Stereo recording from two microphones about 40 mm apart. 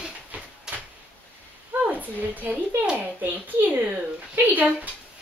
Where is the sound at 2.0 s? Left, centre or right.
Right.